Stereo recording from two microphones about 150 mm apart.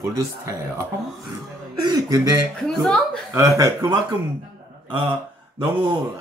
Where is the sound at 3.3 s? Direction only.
20° right (ahead or behind).